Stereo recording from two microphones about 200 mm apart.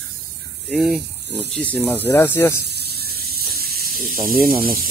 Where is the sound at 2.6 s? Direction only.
55° right (ahead or behind).